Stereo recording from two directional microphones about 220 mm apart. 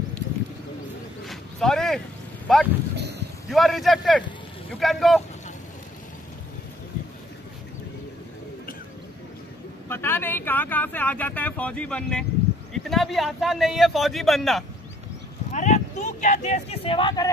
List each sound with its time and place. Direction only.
1.2 s a sound: centre (ahead or behind)
2.4 s speech: 5° left (ahead or behind)
3.0 s a sound: 50° right (ahead or behind)
3.4 s a man's voice: centre (ahead or behind)
9.8 s a man's voice: 10° left (ahead or behind)
15.5 s speech: 35° left (ahead or behind)